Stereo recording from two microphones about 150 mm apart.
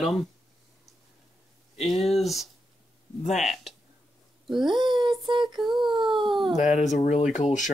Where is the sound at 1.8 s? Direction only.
Centre (ahead or behind).